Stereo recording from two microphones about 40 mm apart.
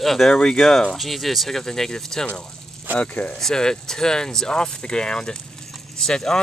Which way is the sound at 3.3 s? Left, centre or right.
Centre.